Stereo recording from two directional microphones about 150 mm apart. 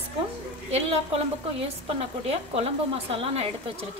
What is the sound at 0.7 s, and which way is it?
Speech, 45° right (ahead or behind).